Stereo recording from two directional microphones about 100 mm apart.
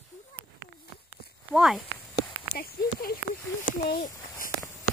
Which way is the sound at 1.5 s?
5° right (ahead or behind).